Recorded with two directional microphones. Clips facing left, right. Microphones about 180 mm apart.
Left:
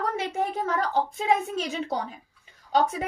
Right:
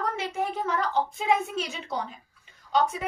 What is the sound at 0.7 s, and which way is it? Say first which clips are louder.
A woman's voice: left 1 dB; 40° left (ahead or behind).